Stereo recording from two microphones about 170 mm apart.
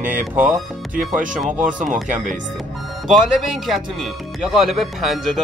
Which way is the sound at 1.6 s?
50° right (ahead or behind).